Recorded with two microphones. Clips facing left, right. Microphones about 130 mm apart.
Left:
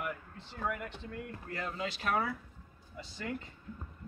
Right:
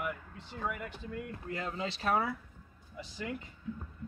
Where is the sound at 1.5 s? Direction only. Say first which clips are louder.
Right 1 dB; 20° right (ahead or behind).